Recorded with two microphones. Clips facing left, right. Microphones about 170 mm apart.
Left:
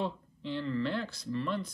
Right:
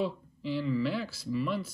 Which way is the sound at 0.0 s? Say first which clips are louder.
Right 3 dB; 5° right (ahead or behind).